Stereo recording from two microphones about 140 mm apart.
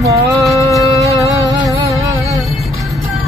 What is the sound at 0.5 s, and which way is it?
Music, 25° left (ahead or behind).